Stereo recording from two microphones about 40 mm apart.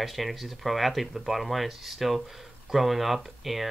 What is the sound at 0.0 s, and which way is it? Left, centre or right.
Speech, centre.